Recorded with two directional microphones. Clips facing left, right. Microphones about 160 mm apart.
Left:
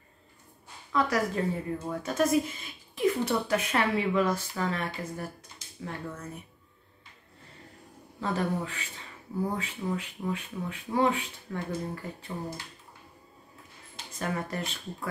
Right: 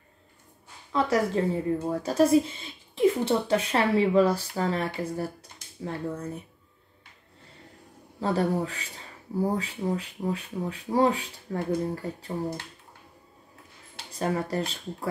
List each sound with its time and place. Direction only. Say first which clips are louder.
0.9 s a woman's voice: right 3 dB; 30° right (ahead or behind)
8.2 s a woman's voice: right 4 dB; 35° right (ahead or behind)
14.1 s a woman's voice: right 5 dB; 35° right (ahead or behind)